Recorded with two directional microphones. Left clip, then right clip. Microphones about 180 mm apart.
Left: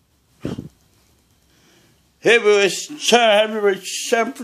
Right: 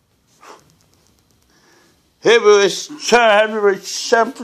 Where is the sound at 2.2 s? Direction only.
40° left (ahead or behind).